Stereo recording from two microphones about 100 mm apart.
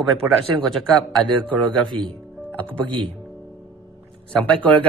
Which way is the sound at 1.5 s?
55° right (ahead or behind).